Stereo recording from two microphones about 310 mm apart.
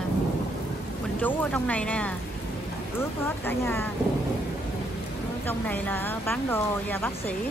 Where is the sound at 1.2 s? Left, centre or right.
Centre.